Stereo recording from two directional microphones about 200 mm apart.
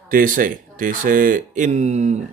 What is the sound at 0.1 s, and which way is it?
Speech, 45° right (ahead or behind).